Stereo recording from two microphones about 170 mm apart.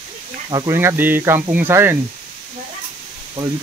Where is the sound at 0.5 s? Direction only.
25° right (ahead or behind).